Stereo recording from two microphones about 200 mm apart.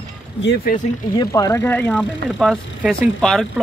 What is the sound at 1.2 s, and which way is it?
Speech, 15° left (ahead or behind).